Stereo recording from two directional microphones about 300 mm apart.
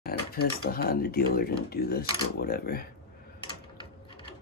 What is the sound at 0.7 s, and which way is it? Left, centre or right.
Speech, left.